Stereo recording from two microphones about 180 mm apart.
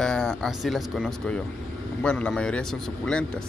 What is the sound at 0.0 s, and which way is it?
Speech, 5° left (ahead or behind).